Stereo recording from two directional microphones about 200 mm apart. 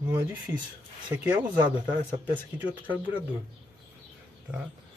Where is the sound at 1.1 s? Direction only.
10° right (ahead or behind).